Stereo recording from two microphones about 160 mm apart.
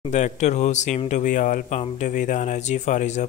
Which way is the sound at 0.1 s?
45° left (ahead or behind).